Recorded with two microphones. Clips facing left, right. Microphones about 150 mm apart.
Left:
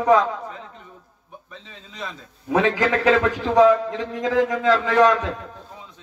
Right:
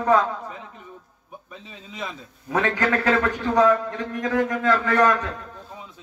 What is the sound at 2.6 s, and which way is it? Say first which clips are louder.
Speech: left 2 dB; 90° left.